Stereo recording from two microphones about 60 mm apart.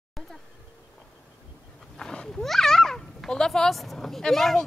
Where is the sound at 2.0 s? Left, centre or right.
Centre.